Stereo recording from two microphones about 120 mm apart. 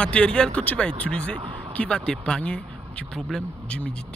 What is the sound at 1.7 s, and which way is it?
Speech, 10° left (ahead or behind).